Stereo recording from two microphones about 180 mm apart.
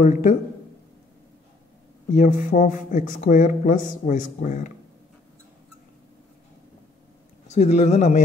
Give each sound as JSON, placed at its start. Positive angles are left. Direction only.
{"t": 0.0, "sound": "speech", "side_deg": 45}
{"t": 2.1, "sound": "speech", "side_deg": 45}
{"t": 7.4, "sound": "speech", "side_deg": 40}